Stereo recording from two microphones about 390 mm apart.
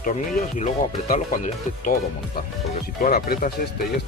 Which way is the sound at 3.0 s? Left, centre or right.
Left.